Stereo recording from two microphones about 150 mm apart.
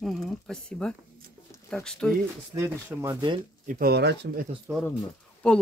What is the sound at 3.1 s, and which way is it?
Speech, 30° right (ahead or behind).